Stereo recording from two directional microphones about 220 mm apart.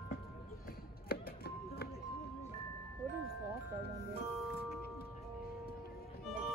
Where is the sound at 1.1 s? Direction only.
45° left (ahead or behind).